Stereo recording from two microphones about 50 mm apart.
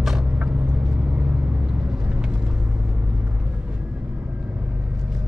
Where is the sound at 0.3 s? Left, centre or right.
Right.